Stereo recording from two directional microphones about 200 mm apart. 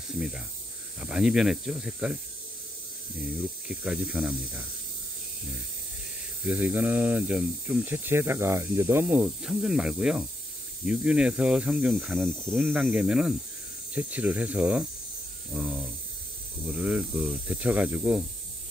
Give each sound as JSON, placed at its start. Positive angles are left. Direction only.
{"t": 1.0, "sound": "speech", "side_deg": -5}
{"t": 3.2, "sound": "speech", "side_deg": -5}
{"t": 6.4, "sound": "speech", "side_deg": -10}